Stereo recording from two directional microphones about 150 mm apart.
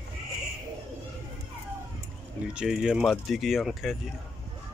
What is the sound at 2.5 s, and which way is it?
Speech, 5° right (ahead or behind).